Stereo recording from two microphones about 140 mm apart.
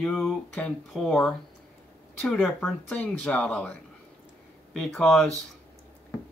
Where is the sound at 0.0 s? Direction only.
5° left (ahead or behind).